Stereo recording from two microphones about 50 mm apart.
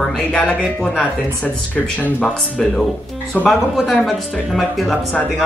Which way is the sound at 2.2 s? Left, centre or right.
Centre.